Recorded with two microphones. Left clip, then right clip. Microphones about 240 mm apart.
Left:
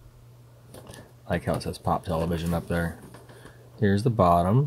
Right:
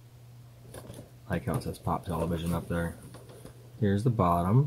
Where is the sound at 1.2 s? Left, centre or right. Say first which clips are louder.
Left 6 dB; left.